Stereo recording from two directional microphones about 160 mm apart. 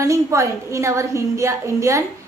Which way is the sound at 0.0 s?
20° right (ahead or behind).